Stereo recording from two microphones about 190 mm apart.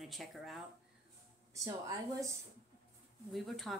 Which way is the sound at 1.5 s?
15° right (ahead or behind).